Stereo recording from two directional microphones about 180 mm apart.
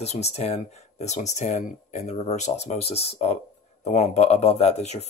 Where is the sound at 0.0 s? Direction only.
35° left (ahead or behind).